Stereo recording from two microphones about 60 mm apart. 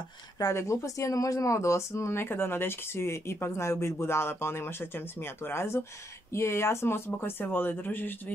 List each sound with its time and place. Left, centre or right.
0.4 s speech: left